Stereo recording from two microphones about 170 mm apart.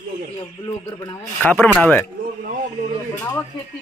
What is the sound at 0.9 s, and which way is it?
Speech, 25° left (ahead or behind).